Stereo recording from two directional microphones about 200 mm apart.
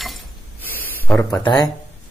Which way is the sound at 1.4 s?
20° left (ahead or behind).